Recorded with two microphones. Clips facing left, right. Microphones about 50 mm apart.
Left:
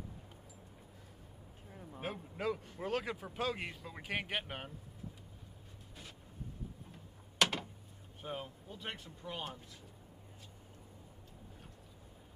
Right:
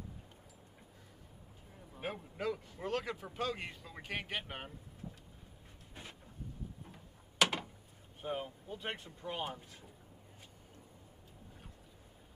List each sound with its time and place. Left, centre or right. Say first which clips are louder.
1.7 s a sound: left 6 dB; centre
2.0 s speech: right 1 dB; centre
6.9 s gears: left 1 dB; centre
8.2 s speech: right 4 dB; centre
8.7 s speech: right 3 dB; right